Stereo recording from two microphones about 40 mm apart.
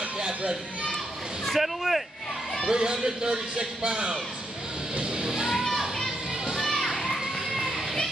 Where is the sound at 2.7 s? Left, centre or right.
Centre.